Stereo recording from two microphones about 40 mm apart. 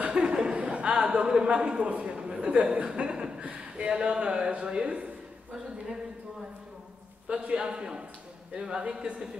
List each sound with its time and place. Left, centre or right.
0.1 s chuckle: right
1.5 s a man's voice: right
7.2 s a man's voice: right